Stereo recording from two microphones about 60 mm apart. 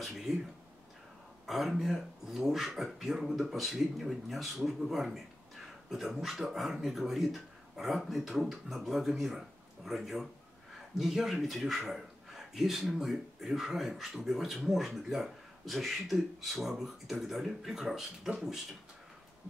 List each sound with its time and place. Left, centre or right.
0.0 s speech: centre
1.4 s a man's voice: centre